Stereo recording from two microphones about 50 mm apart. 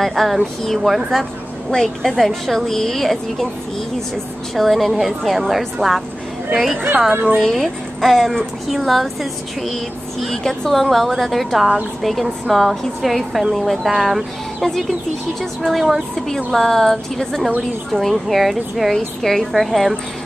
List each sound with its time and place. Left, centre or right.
0.0 s a woman's voice: centre
4.6 s a woman's voice: centre
7.3 s a woman's voice: centre